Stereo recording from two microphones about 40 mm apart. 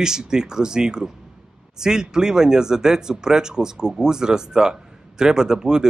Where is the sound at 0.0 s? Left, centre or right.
Centre.